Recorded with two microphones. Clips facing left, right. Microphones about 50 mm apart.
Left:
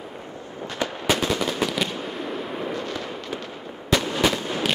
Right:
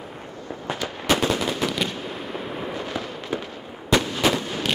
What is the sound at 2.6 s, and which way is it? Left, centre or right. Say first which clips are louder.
Fireworks: even; centre.